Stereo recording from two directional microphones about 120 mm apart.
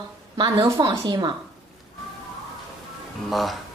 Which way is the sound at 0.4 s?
35° right (ahead or behind).